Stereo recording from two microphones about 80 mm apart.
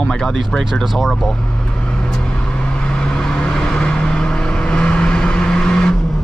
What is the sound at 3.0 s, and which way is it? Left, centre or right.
Vehicle, centre.